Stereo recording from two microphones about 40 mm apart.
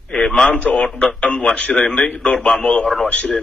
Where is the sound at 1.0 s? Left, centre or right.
Left.